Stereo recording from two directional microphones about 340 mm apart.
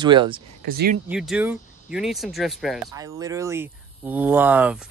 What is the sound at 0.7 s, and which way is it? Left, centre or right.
Speech, right.